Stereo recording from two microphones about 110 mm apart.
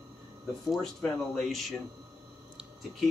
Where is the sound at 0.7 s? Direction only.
5° left (ahead or behind).